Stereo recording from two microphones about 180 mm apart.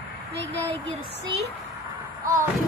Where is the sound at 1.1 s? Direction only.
70° right (ahead or behind).